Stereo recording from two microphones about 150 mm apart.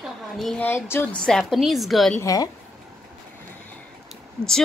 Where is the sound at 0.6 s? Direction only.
15° left (ahead or behind).